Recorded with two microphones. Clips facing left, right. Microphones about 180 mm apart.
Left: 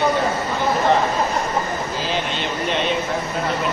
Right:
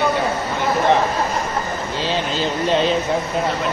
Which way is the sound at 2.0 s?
30° right (ahead or behind).